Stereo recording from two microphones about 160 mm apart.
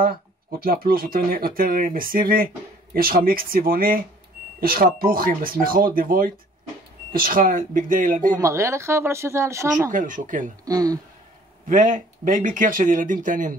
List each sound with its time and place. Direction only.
0.0 s speech: 65° right (ahead or behind)
8.4 s speech: 20° right (ahead or behind)
9.8 s speech: 55° right (ahead or behind)
10.6 s speech: 20° right (ahead or behind)
11.6 s speech: 55° right (ahead or behind)